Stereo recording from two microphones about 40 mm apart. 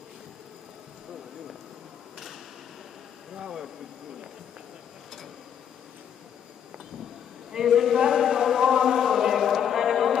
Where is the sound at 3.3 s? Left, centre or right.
Centre.